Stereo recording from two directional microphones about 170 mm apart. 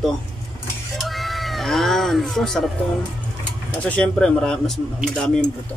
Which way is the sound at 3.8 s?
5° left (ahead or behind).